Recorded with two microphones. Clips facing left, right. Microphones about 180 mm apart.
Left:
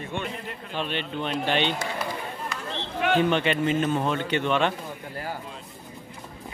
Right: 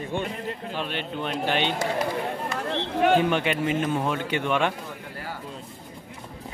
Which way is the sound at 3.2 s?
10° right (ahead or behind).